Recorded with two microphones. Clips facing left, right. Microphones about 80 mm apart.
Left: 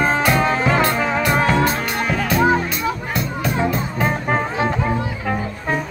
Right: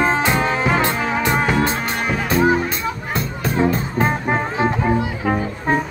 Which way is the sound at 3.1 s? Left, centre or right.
Right.